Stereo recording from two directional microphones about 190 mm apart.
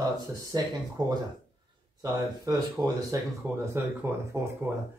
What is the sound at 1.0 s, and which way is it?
Speech, 20° right (ahead or behind).